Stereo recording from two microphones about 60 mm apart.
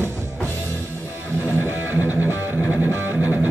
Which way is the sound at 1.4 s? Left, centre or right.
Right.